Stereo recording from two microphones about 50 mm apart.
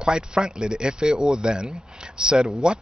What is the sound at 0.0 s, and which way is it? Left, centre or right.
Speech, centre.